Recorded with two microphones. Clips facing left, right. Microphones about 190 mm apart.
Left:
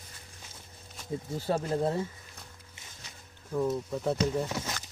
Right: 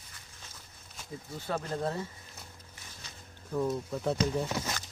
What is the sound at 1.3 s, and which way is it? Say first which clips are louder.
Speech: left 5 dB; 25° left (ahead or behind).